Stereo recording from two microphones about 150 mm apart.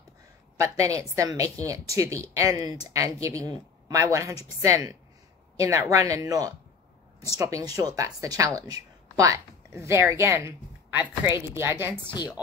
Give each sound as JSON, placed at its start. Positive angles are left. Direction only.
{"t": 0.6, "sound": "a woman's voice", "side_deg": -20}